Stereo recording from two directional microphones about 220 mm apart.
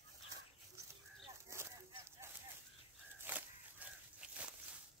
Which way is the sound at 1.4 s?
10° right (ahead or behind).